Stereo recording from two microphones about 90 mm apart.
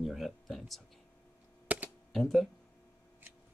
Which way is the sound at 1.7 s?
15° right (ahead or behind).